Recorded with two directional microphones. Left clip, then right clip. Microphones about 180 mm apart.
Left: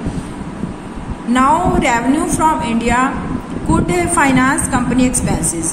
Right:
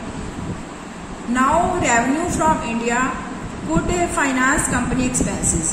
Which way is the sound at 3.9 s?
55° left (ahead or behind).